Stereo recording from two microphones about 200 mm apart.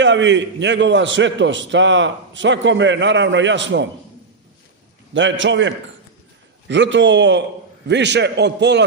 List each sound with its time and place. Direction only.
0.0 s a man's voice: 65° right (ahead or behind)
5.1 s a man's voice: 65° right (ahead or behind)